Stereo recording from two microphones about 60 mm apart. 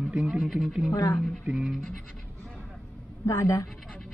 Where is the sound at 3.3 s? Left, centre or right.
Left.